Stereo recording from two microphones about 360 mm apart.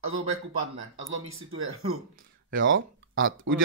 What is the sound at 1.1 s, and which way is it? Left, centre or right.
Speech, right.